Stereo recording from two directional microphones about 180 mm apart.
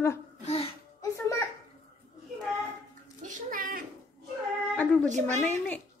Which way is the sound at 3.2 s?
50° right (ahead or behind).